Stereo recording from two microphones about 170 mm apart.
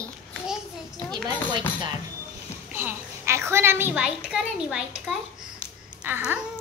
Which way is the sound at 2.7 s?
15° right (ahead or behind).